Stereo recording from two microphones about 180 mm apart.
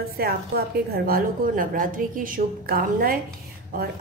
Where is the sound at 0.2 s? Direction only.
55° right (ahead or behind).